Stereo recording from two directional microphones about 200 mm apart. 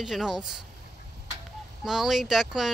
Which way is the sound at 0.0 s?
Centre (ahead or behind).